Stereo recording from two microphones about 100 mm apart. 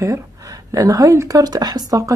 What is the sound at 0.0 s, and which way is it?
Speech, 30° right (ahead or behind).